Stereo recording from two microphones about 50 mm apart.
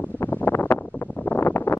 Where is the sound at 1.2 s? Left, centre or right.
Left.